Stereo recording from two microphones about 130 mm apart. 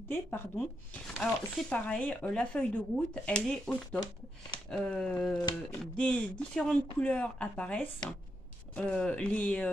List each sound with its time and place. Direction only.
0.1 s speech: 15° left (ahead or behind)
5.4 s a sound: 30° left (ahead or behind)
5.8 s speech: 10° left (ahead or behind)